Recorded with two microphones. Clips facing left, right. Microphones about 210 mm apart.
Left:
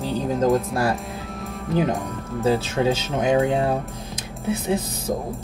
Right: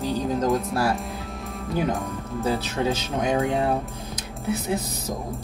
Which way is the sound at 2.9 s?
30° left (ahead or behind).